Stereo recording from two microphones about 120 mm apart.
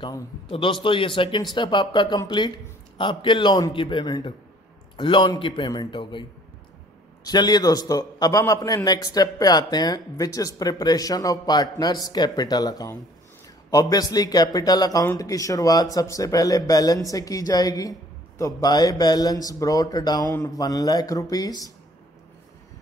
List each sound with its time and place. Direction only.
0.5 s a man's voice: 45° left (ahead or behind)
7.2 s a man's voice: 35° left (ahead or behind)